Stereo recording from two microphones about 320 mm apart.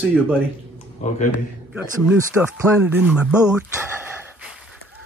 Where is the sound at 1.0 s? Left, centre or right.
Left.